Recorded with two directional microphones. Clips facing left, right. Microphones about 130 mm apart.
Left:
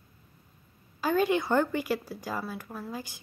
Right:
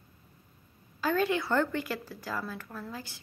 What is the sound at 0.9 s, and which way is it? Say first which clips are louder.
Speech: left 2 dB; 15° left (ahead or behind).